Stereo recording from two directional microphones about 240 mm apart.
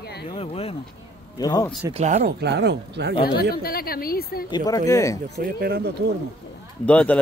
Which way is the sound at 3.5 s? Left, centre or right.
Left.